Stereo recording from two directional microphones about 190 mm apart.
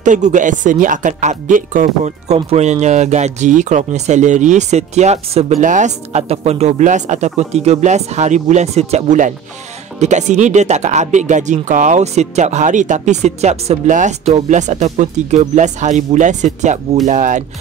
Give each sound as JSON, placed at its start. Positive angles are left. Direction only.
{"t": 0.0, "sound": "speech", "side_deg": -40}